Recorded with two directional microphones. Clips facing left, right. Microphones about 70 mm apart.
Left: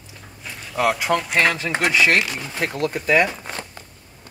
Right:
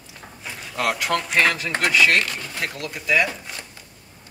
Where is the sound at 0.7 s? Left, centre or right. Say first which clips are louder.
Left 3 dB; centre.